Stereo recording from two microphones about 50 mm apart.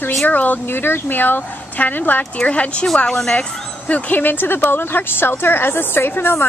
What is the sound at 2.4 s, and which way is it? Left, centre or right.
Speech, left.